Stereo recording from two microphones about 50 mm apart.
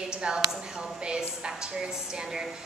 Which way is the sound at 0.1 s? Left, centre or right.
Centre.